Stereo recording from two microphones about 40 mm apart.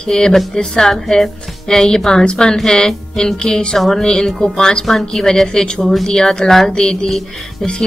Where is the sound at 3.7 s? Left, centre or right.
Centre.